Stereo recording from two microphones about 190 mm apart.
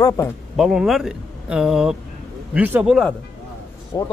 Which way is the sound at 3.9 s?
20° left (ahead or behind).